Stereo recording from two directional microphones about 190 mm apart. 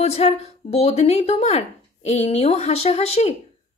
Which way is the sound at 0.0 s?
35° left (ahead or behind).